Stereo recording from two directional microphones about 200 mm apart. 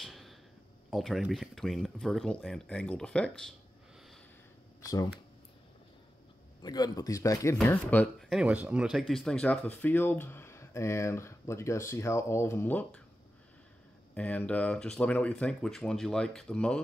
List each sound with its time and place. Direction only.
0.0 s a sound: centre (ahead or behind)
0.8 s speech: centre (ahead or behind)
4.8 s speech: 15° left (ahead or behind)
6.6 s speech: 20° left (ahead or behind)
14.1 s speech: 5° left (ahead or behind)